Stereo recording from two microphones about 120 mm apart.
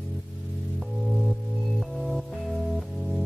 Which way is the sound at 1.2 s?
Centre (ahead or behind).